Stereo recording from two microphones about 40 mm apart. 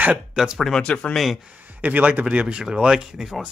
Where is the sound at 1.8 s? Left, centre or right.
Right.